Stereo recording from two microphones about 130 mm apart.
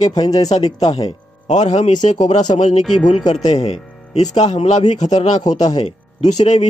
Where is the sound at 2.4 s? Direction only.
35° left (ahead or behind).